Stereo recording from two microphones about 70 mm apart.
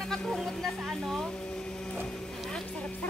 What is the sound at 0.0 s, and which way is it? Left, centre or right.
Speech, centre.